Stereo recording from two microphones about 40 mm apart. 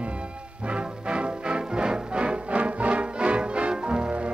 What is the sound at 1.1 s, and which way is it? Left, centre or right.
Music, right.